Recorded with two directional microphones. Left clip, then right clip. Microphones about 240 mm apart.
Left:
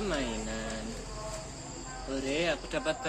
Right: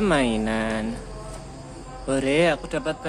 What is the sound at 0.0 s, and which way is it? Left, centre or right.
Speech, right.